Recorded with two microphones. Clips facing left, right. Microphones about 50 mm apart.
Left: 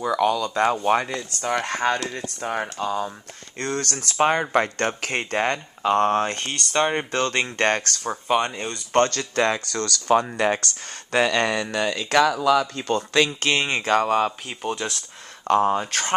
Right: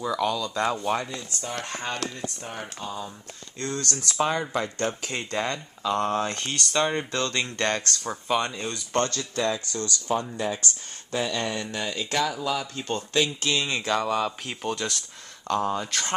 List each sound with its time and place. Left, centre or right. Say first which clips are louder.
0.0 s speech: left 5 dB; left
1.0 s speech: left 7 dB; left
3.5 s speech: left 4 dB; left
7.3 s speech: left 5 dB; left
8.0 s speech: left 4 dB; centre
8.9 s speech: left 7 dB; left
13.4 s speech: left 4 dB; left
14.5 s speech: left 2 dB; centre
15.4 s speech: left 6 dB; left